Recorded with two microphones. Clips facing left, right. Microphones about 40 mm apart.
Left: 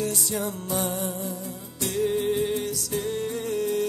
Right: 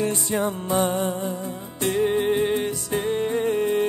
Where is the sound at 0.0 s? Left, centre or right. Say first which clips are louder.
Right 5 dB; right.